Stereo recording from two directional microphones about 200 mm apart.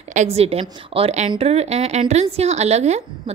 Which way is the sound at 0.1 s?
35° right (ahead or behind).